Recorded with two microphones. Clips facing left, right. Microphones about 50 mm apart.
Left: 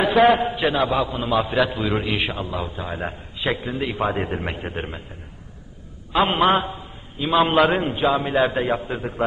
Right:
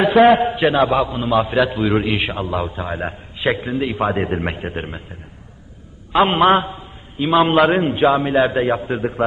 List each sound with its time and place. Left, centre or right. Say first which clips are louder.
0.0 s a man's voice: right 4 dB; centre
6.1 s a man's voice: right 4 dB; centre
8.8 s a man's voice: right 6 dB; centre